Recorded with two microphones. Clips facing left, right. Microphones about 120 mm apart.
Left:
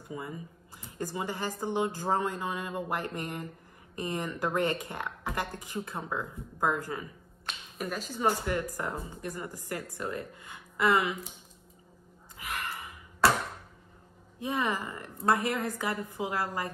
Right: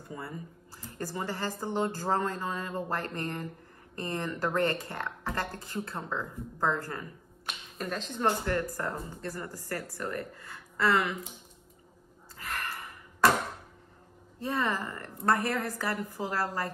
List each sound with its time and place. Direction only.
0.1 s speech: 15° left (ahead or behind)
12.4 s gasp: 15° left (ahead or behind)
14.4 s speech: 15° left (ahead or behind)